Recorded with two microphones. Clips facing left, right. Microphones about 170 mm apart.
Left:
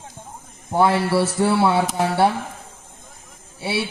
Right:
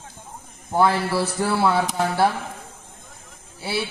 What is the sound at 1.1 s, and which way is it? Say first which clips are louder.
Speech: left 4 dB; 25° left (ahead or behind).